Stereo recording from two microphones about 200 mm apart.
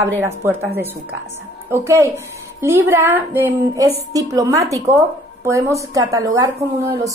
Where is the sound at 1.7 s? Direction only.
15° right (ahead or behind).